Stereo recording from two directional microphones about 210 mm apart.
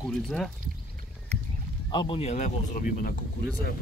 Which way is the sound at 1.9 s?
25° left (ahead or behind).